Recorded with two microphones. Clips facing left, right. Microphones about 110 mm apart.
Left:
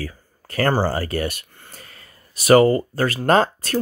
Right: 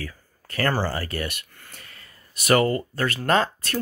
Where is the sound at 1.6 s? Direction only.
35° left (ahead or behind).